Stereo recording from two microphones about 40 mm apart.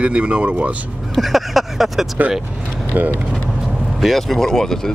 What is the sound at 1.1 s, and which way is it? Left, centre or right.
Vehicle, centre.